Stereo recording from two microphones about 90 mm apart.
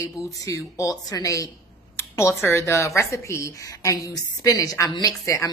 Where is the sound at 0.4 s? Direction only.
35° left (ahead or behind).